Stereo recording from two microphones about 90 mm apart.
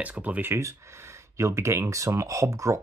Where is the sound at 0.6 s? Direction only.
35° right (ahead or behind).